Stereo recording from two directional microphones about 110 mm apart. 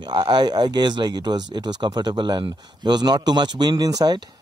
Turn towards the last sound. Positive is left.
turn(degrees=-35)  # may be behind; listen again after turning